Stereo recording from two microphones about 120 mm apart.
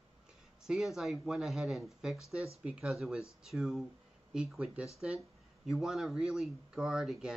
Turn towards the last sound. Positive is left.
turn(degrees=-5)  # may be behind; listen again after turning